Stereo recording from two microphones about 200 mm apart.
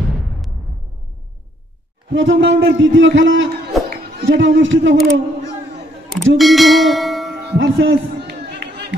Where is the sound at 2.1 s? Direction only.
65° right (ahead or behind).